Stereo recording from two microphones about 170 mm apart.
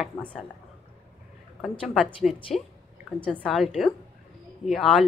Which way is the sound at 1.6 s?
Centre (ahead or behind).